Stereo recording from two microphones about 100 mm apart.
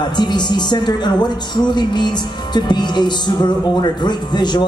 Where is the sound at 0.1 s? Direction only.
45° left (ahead or behind).